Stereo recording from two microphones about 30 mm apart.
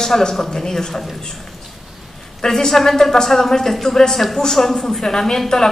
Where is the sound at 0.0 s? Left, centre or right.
Centre.